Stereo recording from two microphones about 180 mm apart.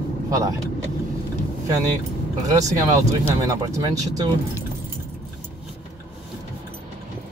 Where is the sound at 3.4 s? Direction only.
20° right (ahead or behind).